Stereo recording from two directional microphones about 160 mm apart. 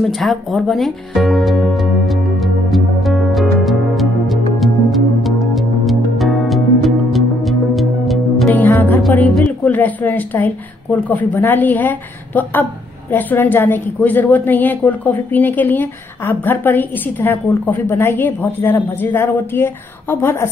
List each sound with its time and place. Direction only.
0.0 s music: centre (ahead or behind)
8.5 s music: 10° left (ahead or behind)
9.3 s a woman's voice: 10° left (ahead or behind)